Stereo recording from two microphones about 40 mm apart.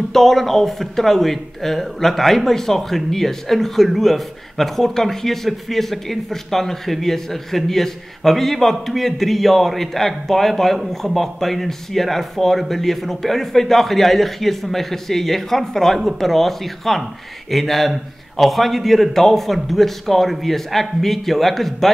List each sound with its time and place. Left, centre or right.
0.1 s speech: centre